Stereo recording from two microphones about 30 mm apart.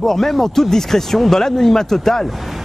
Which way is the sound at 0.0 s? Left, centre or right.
Centre.